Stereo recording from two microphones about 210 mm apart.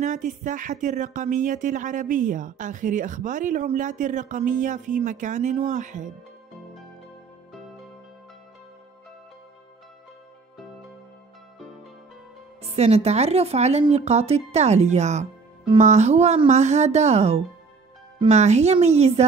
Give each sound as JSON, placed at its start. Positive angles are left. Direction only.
{"t": 0.0, "sound": "speech", "side_deg": -35}
{"t": 12.6, "sound": "speech", "side_deg": -30}